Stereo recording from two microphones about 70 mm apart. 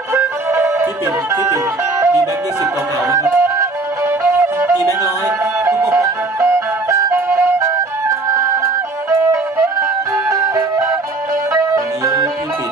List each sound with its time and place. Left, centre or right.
0.1 s music: right
5.4 s music: right